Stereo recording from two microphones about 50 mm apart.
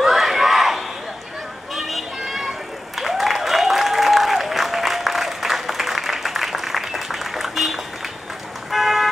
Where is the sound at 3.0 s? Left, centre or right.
Centre.